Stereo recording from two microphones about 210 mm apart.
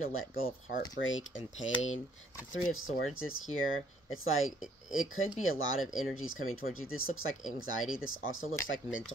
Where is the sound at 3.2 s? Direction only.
75° left (ahead or behind).